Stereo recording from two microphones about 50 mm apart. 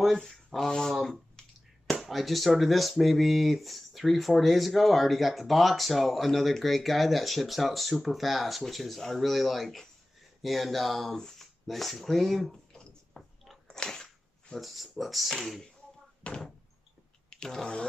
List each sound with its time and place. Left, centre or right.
0.1 s speech: centre
2.0 s speech: centre
13.1 s chewing: centre
13.7 s biting: centre
14.5 s speech: centre
16.2 s speech: left
17.3 s a sound: centre